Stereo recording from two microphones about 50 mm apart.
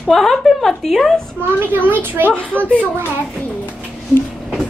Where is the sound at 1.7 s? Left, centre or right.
Right.